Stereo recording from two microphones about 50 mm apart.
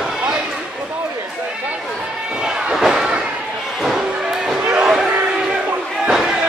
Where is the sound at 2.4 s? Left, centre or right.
Centre.